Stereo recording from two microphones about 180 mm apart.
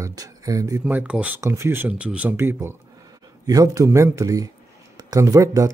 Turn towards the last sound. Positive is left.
turn(degrees=-15)  # may be behind; listen again after turning